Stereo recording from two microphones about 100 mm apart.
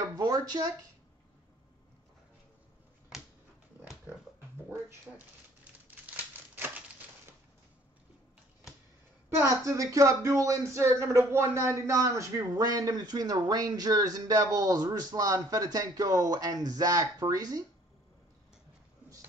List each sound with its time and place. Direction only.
0.1 s a sound: 45° right (ahead or behind)
3.1 s finger snapping: 5° right (ahead or behind)
5.1 s speech: centre (ahead or behind)
5.6 s crumpling: 15° right (ahead or behind)
9.4 s speech: 35° right (ahead or behind)